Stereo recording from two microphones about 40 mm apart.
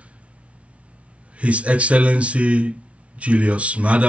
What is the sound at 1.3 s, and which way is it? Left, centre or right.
Speech, right.